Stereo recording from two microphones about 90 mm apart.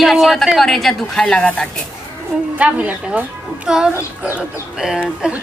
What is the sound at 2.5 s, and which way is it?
Speech, 15° right (ahead or behind).